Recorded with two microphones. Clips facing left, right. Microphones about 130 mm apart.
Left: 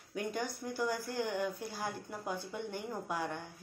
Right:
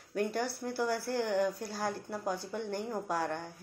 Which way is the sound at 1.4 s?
40° right (ahead or behind).